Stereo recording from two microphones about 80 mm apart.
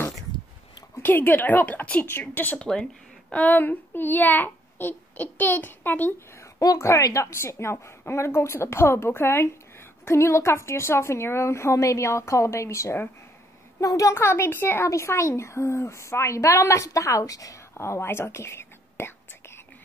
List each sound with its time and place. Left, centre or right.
1.0 s a woman's voice: left
2.7 s a child's voice: centre
6.4 s a woman's voice: left
14.9 s a woman's voice: left
17.7 s whispering: left